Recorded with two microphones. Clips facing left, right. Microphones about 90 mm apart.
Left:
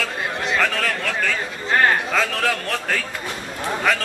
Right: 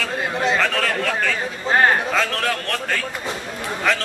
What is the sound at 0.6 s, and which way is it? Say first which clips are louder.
A man's voice: right 1 dB; centre (ahead or behind).